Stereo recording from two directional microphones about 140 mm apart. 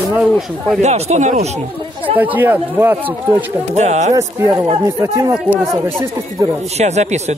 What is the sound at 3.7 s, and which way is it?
Speech, 55° right (ahead or behind).